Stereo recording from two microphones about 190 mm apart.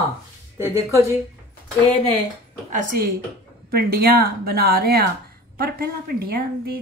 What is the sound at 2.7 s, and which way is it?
Speech, 50° right (ahead or behind).